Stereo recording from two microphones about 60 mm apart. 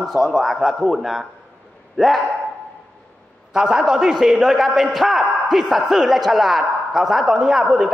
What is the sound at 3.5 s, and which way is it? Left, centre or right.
A man's voice, centre.